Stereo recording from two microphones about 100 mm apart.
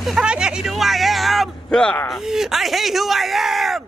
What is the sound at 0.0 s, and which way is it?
Speech, 5° right (ahead or behind).